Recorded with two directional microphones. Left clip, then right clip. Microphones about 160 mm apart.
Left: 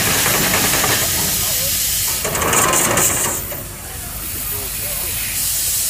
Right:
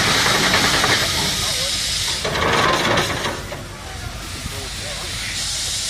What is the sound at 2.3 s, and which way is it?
Sewing machine, 5° left (ahead or behind).